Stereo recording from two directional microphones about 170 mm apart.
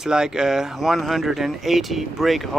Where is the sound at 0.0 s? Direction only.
5° right (ahead or behind).